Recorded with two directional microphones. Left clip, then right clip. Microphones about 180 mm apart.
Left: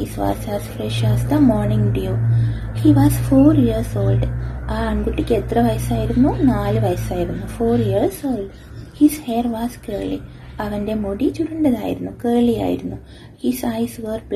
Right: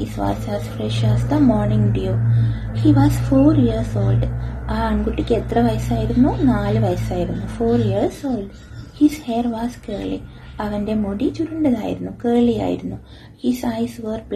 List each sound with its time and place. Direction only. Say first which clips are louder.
0.0 s a woman's voice: left 1 dB; 20° left (ahead or behind)